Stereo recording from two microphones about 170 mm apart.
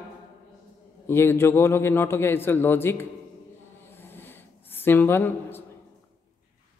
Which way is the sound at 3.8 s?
10° left (ahead or behind).